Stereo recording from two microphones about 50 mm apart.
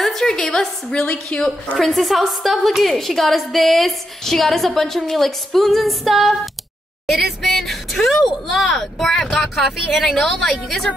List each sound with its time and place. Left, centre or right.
0.0 s a woman's voice: centre
1.8 s a woman's voice: centre